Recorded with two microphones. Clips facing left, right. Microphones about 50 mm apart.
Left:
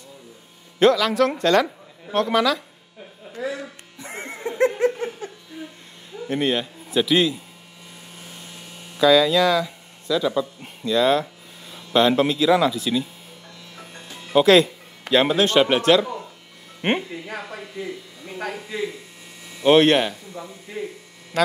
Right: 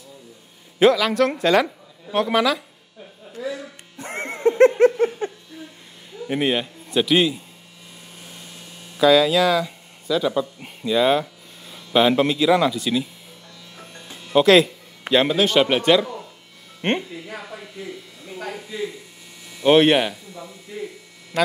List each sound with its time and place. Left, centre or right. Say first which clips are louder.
0.7 s speech: right 1 dB; centre
3.3 s music: left 1 dB; left
4.0 s music: right 4 dB; right
4.5 s a sound: right 6 dB; right
4.9 s laughter: right 8 dB; right
5.6 s a sound: left 3 dB; left
6.2 s a man's voice: right 1 dB; centre
8.9 s speech: even; centre
14.3 s music: even; centre
15.3 s speech: even; centre
18.2 s speech: left 2 dB; left
19.6 s speech: even; centre
20.3 s speech: left 2 dB; left